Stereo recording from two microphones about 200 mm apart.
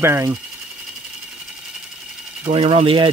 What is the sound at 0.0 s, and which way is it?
Speech, 15° right (ahead or behind).